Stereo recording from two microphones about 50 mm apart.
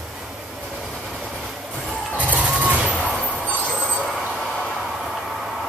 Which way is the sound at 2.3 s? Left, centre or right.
Right.